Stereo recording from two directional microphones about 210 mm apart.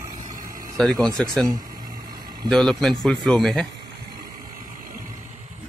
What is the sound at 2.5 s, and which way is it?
A man's voice, 5° left (ahead or behind).